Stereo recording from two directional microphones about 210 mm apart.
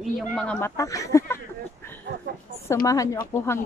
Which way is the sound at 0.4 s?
10° left (ahead or behind).